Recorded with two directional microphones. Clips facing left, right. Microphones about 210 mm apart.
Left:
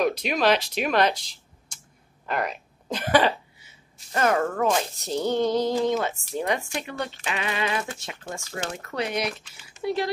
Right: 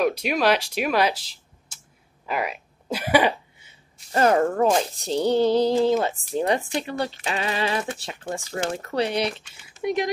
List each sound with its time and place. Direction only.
0.0 s speech: 5° right (ahead or behind)
3.6 s speech: 35° right (ahead or behind)